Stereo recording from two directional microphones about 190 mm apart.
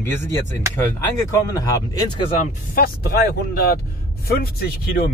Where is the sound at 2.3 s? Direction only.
50° left (ahead or behind).